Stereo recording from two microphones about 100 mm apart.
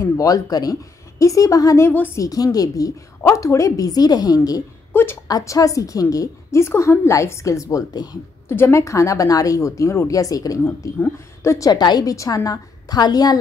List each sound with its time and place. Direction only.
0.0 s a woman's voice: 35° left (ahead or behind)
1.9 s a woman's voice: 20° left (ahead or behind)
2.2 s a woman's voice: 35° left (ahead or behind)
4.9 s speech: 25° left (ahead or behind)
5.3 s a woman's voice: 35° left (ahead or behind)
8.5 s a woman's voice: 25° left (ahead or behind)
10.6 s a woman's voice: 25° left (ahead or behind); by 13.4 s 40° left (ahead or behind)